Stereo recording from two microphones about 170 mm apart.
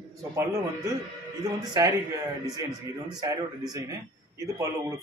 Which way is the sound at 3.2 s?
25° right (ahead or behind).